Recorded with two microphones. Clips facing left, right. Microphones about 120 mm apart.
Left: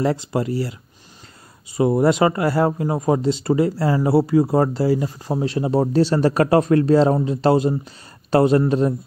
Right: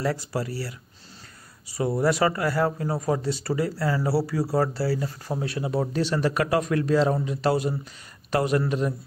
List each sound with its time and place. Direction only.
0.0 s speech: 25° left (ahead or behind)